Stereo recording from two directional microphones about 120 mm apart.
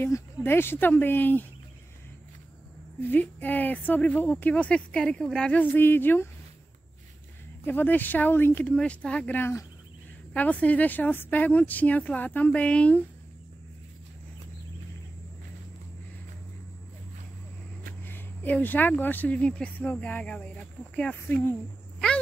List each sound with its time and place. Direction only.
0.0 s a woman's voice: 20° left (ahead or behind)
3.0 s a woman's voice: 15° left (ahead or behind)
7.6 s a woman's voice: 15° left (ahead or behind)
18.0 s a woman's voice: 15° left (ahead or behind)
22.0 s speech: 5° left (ahead or behind)